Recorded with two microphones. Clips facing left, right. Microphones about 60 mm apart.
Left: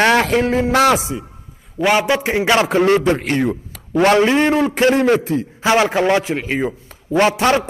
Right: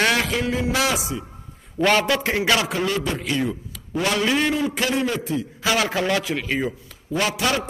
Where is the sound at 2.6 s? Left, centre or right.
Left.